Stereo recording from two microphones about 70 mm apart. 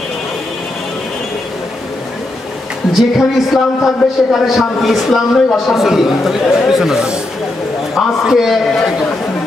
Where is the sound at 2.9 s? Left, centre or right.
Centre.